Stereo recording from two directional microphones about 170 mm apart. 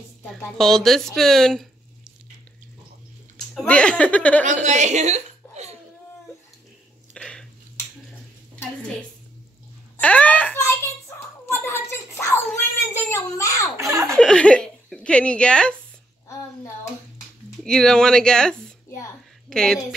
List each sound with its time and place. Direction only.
0.2 s speech: 5° left (ahead or behind)
3.3 s speech: 5° left (ahead or behind)
4.6 s a sound: 45° right (ahead or behind)
7.2 s a sound: 5° left (ahead or behind)
9.9 s speech: 10° left (ahead or behind)
11.1 s a sound: 15° left (ahead or behind)
12.9 s a child's voice: 20° left (ahead or behind)
13.7 s speech: 20° right (ahead or behind)
14.1 s speech: 5° left (ahead or behind)
17.6 s speech: 5° left (ahead or behind)